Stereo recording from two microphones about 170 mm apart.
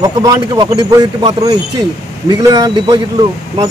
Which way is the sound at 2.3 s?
20° right (ahead or behind).